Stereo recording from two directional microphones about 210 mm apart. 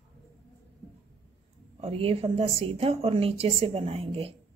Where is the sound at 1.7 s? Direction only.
30° right (ahead or behind).